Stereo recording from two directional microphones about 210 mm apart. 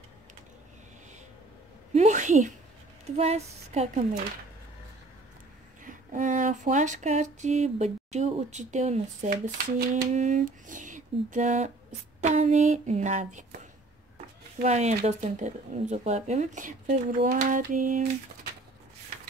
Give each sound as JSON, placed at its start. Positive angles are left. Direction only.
{"t": 2.0, "sound": "a sound", "side_deg": -35}
{"t": 3.2, "sound": "speech", "side_deg": -30}
{"t": 5.9, "sound": "speech", "side_deg": -40}
{"t": 14.6, "sound": "speech", "side_deg": -30}